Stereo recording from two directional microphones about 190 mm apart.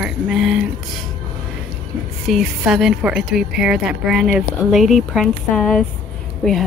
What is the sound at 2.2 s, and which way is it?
Speech, centre (ahead or behind).